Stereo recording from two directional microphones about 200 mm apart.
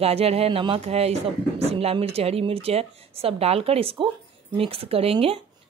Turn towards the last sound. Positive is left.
turn(degrees=-30)  # may be behind; listen again after turning